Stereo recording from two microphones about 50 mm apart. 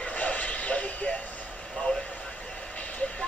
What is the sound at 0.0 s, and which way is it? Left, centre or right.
Vehicle, left.